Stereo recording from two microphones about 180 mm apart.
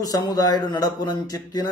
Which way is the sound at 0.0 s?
20° left (ahead or behind).